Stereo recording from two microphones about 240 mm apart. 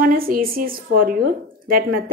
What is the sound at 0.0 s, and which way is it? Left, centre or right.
A woman's voice, right.